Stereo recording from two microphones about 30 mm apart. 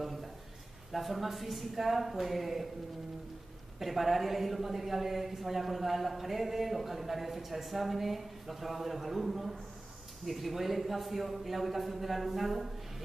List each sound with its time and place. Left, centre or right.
0.0 s a sound: centre
0.9 s a woman's voice: centre
3.8 s a woman's voice: centre